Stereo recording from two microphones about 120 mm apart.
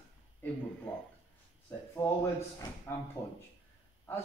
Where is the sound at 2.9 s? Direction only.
20° left (ahead or behind).